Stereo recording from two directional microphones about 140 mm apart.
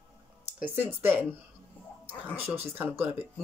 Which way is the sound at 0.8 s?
15° right (ahead or behind).